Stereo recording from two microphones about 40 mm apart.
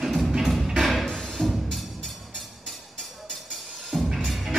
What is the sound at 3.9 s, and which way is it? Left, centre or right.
Music, right.